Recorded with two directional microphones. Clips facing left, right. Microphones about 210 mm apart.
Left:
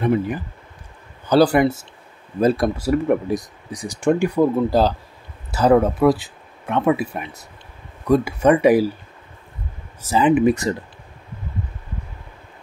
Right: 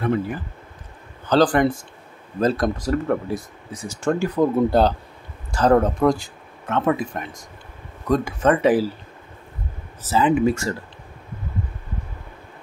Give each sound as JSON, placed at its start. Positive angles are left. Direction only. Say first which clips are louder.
{"t": 0.0, "sound": "speech", "louder": "left 3 dB", "side_deg": 15}
{"t": 4.6, "sound": "speech", "louder": "even", "side_deg": 0}
{"t": 10.0, "sound": "speech", "louder": "left 3 dB", "side_deg": 15}